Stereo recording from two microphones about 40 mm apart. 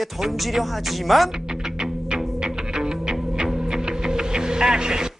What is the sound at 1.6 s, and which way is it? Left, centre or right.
Music, centre.